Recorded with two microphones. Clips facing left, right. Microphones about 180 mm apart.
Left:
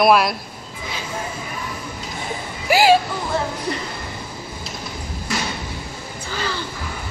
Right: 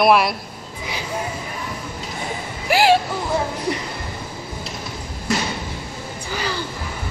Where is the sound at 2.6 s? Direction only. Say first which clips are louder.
Left 1 dB; centre (ahead or behind).